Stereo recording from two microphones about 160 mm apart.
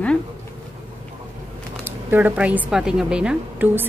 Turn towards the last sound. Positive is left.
turn(degrees=-10)  # may be behind; listen again after turning